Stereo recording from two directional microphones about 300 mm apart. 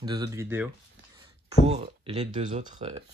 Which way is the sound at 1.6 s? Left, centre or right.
Right.